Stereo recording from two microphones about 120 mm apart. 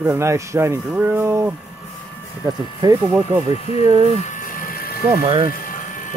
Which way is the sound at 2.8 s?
35° right (ahead or behind).